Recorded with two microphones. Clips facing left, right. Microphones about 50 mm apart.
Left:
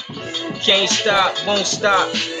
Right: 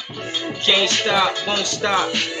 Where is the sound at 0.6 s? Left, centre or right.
Centre.